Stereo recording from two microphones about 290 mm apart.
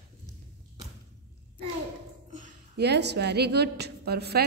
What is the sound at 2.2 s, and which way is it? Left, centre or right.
A woman's voice, right.